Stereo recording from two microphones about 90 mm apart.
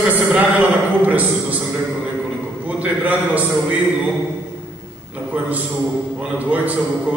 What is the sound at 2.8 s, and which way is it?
Speech, 15° right (ahead or behind).